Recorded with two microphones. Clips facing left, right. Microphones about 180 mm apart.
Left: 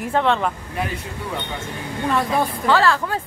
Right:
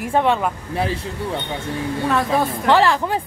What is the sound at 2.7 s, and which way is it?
Speech, 20° right (ahead or behind).